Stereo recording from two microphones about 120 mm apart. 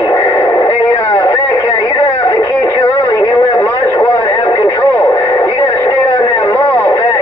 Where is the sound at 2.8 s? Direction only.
50° left (ahead or behind).